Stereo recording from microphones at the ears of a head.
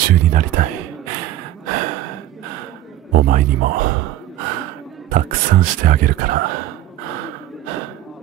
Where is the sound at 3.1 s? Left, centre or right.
Right.